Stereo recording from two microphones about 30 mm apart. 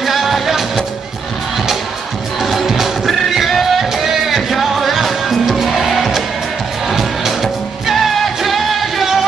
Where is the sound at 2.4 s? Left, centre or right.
Centre.